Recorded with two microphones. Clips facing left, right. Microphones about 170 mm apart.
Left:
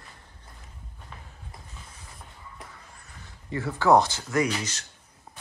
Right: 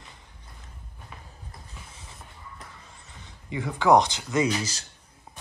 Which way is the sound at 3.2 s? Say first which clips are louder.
Left 1 dB; 15° right (ahead or behind).